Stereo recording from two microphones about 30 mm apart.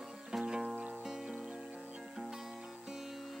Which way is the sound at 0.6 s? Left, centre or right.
Right.